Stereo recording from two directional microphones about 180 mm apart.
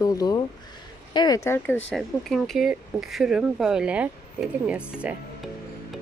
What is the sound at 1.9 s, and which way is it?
A woman's voice, centre (ahead or behind).